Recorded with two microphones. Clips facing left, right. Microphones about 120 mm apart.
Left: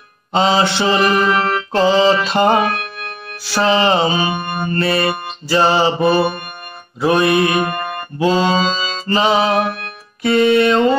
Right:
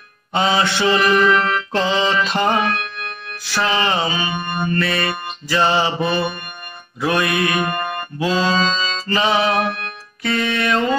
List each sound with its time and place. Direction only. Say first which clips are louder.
0.3 s music: left 3 dB; 25° left (ahead or behind)
8.6 s music: left 2 dB; 10° left (ahead or behind); by 11.0 s 25° left (ahead or behind)